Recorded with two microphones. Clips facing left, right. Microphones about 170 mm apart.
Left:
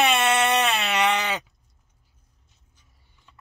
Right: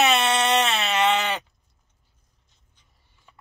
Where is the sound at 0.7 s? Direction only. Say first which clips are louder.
Even; 10° left (ahead or behind).